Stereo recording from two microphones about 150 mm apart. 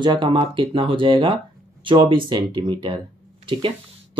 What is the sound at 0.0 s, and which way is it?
Speech, 30° right (ahead or behind).